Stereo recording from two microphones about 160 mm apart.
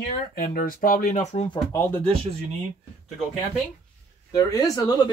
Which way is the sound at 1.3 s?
30° left (ahead or behind).